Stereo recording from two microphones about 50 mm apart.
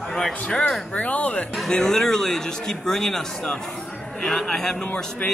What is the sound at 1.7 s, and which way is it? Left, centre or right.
A man's voice, centre.